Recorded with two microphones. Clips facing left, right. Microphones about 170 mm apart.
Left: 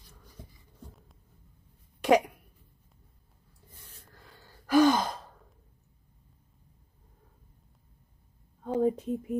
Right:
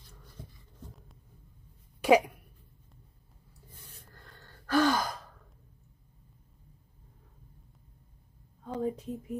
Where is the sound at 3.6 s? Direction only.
5° right (ahead or behind); by 5.3 s 25° left (ahead or behind).